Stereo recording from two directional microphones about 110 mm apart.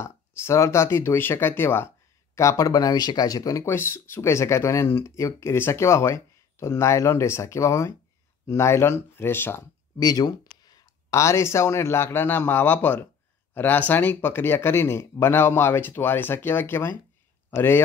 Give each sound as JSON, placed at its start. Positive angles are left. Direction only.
{"t": 0.0, "sound": "speech", "side_deg": 25}
{"t": 3.6, "sound": "speech", "side_deg": 20}
{"t": 9.9, "sound": "speech", "side_deg": 35}